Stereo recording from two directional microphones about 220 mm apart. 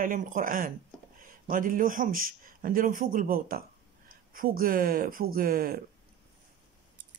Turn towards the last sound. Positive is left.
turn(degrees=-40)  # may be behind; listen again after turning